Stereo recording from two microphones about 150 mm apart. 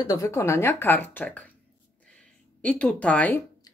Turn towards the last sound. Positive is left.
turn(degrees=10)  # may be behind; listen again after turning